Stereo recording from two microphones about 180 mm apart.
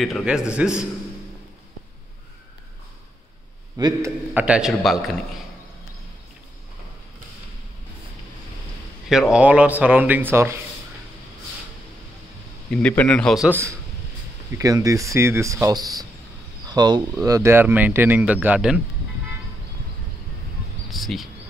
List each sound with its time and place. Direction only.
0.0 s a man's voice: centre (ahead or behind)
3.7 s a man's voice: 20° right (ahead or behind)
4.3 s a man's voice: 5° right (ahead or behind)
9.3 s speech: 5° right (ahead or behind)
12.7 s a man's voice: 5° left (ahead or behind)
13.5 s speech: 15° right (ahead or behind)
20.9 s speech: centre (ahead or behind)